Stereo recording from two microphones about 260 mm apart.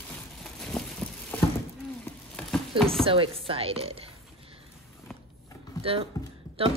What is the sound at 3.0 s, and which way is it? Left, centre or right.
Speech, right.